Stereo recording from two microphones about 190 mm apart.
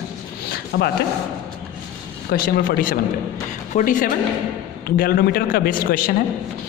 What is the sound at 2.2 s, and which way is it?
A man's voice, 50° left (ahead or behind).